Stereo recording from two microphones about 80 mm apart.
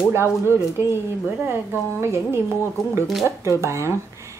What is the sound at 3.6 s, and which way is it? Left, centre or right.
Speech, right.